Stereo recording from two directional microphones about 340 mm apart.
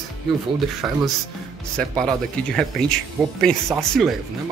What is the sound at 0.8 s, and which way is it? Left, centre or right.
Speech, centre.